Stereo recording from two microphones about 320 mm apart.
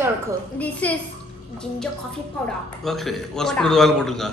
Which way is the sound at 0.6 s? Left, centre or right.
Centre.